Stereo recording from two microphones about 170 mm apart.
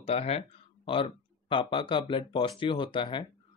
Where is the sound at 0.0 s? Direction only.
35° left (ahead or behind).